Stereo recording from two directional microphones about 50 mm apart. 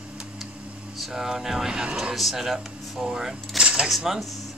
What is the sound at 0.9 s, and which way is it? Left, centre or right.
Speech, centre.